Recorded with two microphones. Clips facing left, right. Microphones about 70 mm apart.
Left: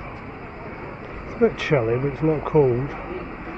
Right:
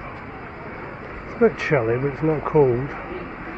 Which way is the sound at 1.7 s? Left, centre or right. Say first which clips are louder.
Even; right.